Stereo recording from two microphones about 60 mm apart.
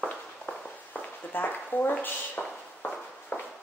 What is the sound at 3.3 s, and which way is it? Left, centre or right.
Walk, left.